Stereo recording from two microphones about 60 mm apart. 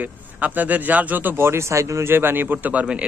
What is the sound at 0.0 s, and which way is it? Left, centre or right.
A man's voice, right.